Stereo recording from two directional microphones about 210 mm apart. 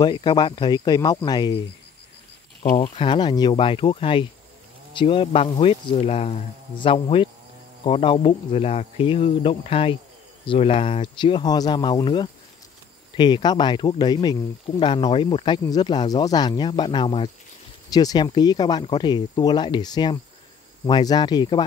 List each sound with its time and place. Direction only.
0.0 s speech: 20° left (ahead or behind)
2.8 s speech: 25° left (ahead or behind)